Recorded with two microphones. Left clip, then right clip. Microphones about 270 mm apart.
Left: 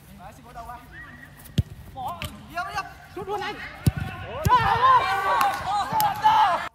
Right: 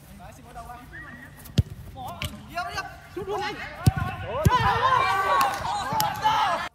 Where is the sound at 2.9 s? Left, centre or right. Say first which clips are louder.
Even; left.